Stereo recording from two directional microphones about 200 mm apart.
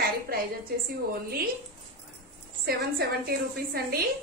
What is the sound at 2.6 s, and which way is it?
A woman's voice, 50° right (ahead or behind).